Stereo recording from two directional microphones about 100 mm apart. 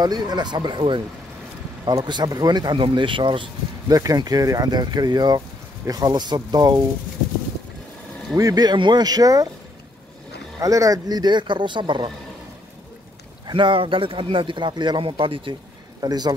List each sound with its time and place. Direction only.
0.0 s speech: 40° right (ahead or behind)
2.0 s speech: 45° right (ahead or behind)
3.9 s speech: 40° right (ahead or behind)
8.4 s speech: 40° right (ahead or behind)
10.6 s speech: 35° right (ahead or behind); by 12.1 s 50° right (ahead or behind)
13.5 s a man's voice: 55° right (ahead or behind)
16.0 s speech: 40° right (ahead or behind)